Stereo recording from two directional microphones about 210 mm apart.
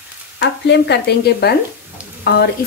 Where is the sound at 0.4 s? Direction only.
50° left (ahead or behind).